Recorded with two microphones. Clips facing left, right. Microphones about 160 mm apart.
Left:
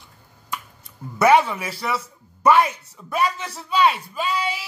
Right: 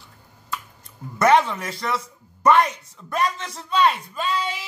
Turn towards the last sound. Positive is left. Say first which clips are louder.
# left 1 dB
turn(degrees=10)  # may be behind; listen again after turning